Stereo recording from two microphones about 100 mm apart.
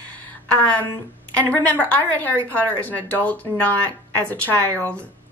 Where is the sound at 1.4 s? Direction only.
15° left (ahead or behind).